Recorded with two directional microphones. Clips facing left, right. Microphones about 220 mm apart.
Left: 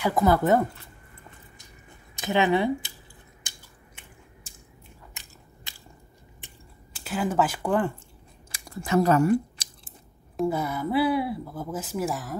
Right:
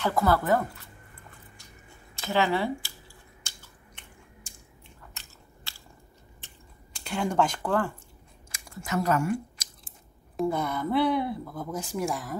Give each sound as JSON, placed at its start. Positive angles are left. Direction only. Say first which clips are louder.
{"t": 0.0, "sound": "speech", "louder": "left 3 dB", "side_deg": 20}
{"t": 2.1, "sound": "speech", "louder": "left 3 dB", "side_deg": 20}
{"t": 3.4, "sound": "chewing", "louder": "left 1 dB", "side_deg": 15}
{"t": 5.1, "sound": "biting", "louder": "left 1 dB", "side_deg": 15}
{"t": 6.4, "sound": "a sound", "louder": "left 2 dB", "side_deg": 5}
{"t": 8.5, "sound": "chewing", "louder": "left 5 dB", "side_deg": 30}
{"t": 10.3, "sound": "speech", "louder": "left 1 dB", "side_deg": 5}